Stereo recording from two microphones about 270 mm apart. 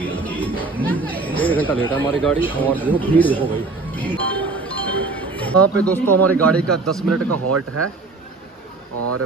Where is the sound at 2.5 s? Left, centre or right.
Centre.